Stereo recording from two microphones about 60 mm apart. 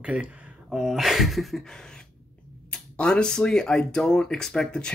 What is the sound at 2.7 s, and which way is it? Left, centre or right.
Speech, centre.